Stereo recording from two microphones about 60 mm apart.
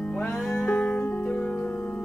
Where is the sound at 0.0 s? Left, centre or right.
Left.